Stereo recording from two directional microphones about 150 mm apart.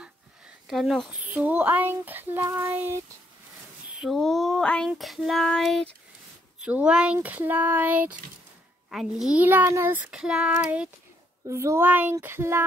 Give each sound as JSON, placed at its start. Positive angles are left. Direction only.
{"t": 0.7, "sound": "child singing", "side_deg": 0}
{"t": 1.3, "sound": "a child's voice", "side_deg": -10}
{"t": 3.9, "sound": "child singing", "side_deg": 0}
{"t": 6.6, "sound": "a child's voice", "side_deg": -5}
{"t": 11.4, "sound": "a child's voice", "side_deg": -20}